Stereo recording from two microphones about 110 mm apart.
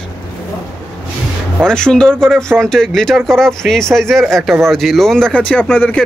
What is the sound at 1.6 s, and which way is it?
Speech, 5° left (ahead or behind).